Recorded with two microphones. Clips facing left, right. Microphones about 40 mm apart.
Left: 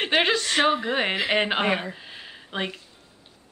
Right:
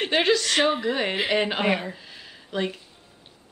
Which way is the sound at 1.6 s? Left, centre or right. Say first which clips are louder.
Even; centre.